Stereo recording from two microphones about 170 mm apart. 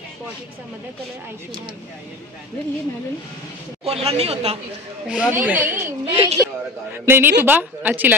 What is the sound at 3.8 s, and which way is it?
Speech, 35° right (ahead or behind).